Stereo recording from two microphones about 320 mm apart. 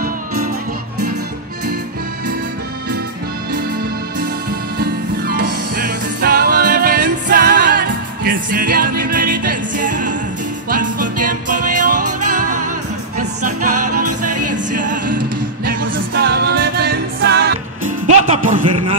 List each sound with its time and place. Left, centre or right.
4.7 s music: right
13.7 s music: right
14.7 s music: right
16.2 s music: right